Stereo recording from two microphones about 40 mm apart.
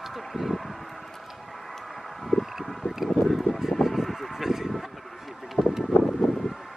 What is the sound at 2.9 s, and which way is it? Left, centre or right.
Vehicle, centre.